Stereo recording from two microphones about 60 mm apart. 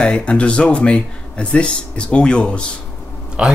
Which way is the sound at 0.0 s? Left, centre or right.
Centre.